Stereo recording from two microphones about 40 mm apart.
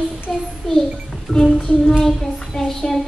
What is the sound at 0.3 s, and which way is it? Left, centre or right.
Child singing, centre.